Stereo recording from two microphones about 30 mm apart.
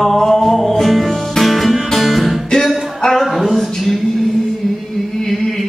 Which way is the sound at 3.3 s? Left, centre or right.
Centre.